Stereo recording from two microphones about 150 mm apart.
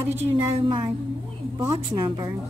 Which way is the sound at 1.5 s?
20° right (ahead or behind).